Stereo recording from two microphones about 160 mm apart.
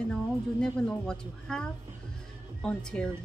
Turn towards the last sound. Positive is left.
turn(degrees=5)  # may be behind; listen again after turning